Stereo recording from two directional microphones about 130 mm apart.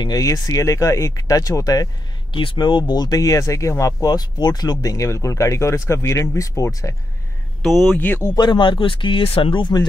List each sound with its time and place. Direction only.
0.0 s speech: 30° left (ahead or behind)
7.6 s speech: centre (ahead or behind)
8.4 s speech: 35° left (ahead or behind)